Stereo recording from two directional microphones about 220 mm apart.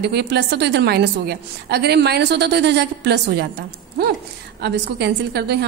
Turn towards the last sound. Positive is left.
turn(degrees=-50)  # may be behind; listen again after turning